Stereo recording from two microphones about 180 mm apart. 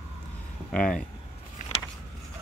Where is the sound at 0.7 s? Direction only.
5° left (ahead or behind).